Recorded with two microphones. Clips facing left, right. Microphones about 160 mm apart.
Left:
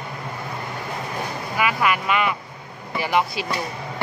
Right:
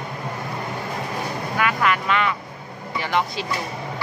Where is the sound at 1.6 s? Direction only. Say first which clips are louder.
Even; 10° left (ahead or behind).